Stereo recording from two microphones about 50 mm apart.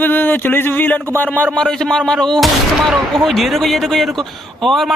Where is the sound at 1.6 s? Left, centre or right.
Centre.